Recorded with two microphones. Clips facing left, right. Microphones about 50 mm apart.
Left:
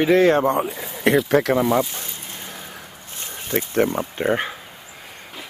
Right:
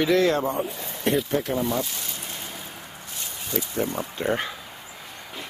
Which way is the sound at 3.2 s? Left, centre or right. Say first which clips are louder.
Left 5 dB; left.